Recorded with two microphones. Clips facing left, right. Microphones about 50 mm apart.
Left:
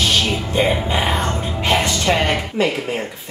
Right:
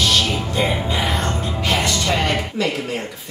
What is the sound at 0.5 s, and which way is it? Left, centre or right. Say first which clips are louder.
Speech: left 4 dB; left.